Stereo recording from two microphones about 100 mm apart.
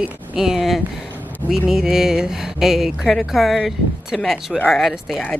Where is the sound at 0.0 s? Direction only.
5° right (ahead or behind).